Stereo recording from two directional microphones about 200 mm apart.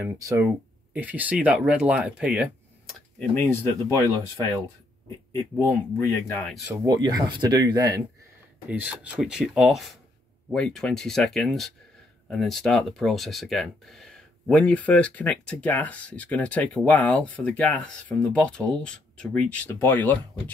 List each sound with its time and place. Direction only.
0.2 s speech: 10° right (ahead or behind)
3.3 s speech: 15° left (ahead or behind)
5.3 s speech: 15° left (ahead or behind)
6.7 s speech: 20° right (ahead or behind)
8.6 s speech: 5° right (ahead or behind); by 20.2 s 10° left (ahead or behind)